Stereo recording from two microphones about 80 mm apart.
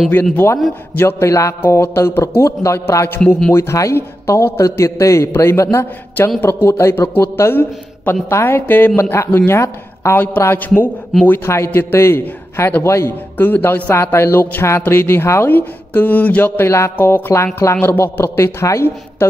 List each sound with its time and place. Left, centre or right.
0.1 s a man's voice: left
13.4 s a man's voice: left